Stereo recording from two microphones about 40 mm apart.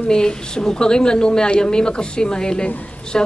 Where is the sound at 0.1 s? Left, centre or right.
Centre.